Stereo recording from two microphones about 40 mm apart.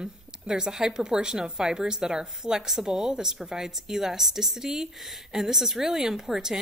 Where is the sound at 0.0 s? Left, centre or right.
Centre.